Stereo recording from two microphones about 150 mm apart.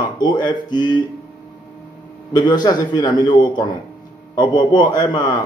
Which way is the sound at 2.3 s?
30° left (ahead or behind).